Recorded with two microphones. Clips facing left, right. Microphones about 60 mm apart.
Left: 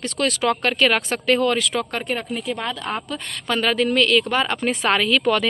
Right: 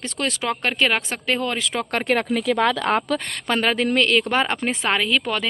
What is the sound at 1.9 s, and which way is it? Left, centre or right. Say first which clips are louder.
Speech: right 5 dB; right.